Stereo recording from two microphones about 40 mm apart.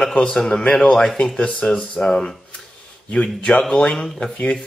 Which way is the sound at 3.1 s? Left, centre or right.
Left.